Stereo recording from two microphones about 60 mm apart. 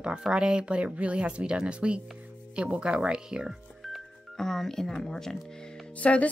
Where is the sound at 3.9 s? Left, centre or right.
Centre.